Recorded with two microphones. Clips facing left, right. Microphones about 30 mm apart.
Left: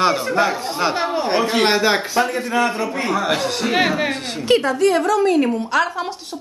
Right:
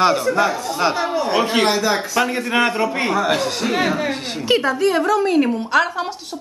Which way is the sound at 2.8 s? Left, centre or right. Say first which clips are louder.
Right 3 dB; right.